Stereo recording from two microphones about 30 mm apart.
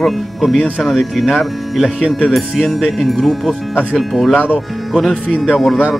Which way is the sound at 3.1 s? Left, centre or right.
Centre.